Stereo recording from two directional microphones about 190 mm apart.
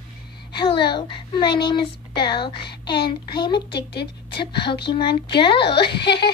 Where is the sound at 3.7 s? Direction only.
60° left (ahead or behind).